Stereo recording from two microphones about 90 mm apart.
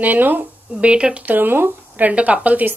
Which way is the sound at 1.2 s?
20° right (ahead or behind).